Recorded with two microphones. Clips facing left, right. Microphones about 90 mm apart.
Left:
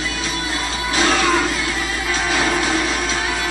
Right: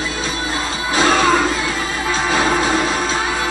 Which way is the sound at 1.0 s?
30° right (ahead or behind).